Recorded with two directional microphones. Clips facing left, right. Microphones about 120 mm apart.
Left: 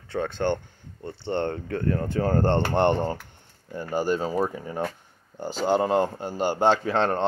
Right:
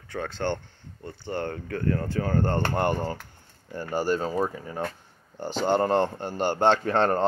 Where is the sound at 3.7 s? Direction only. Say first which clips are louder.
Left 1 dB; 15° left (ahead or behind).